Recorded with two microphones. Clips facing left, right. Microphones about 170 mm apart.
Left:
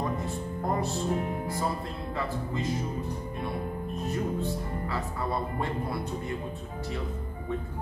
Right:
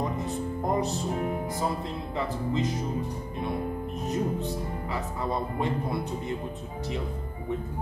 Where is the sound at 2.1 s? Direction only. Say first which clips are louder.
Right 4 dB; 20° right (ahead or behind).